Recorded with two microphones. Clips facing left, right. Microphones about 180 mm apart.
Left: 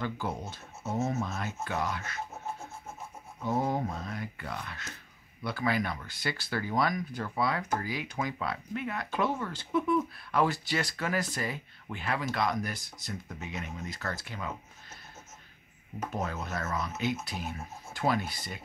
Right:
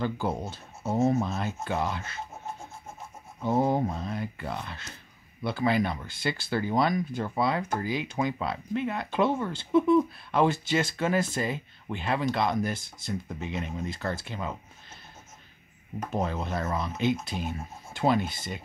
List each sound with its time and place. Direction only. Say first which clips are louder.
0.0 s speech: right 5 dB; 30° right (ahead or behind)
3.4 s speech: right 5 dB; 30° right (ahead or behind)
16.1 s speech: right 6 dB; 30° right (ahead or behind)